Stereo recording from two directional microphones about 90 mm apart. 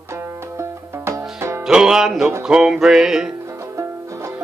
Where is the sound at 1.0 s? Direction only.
30° right (ahead or behind).